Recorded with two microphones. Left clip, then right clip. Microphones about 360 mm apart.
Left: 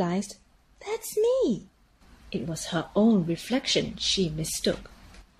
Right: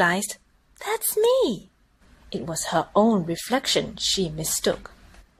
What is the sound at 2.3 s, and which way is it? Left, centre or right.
Speech, centre.